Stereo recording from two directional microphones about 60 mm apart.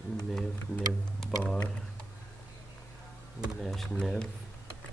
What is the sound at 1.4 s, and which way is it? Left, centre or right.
Speech, left.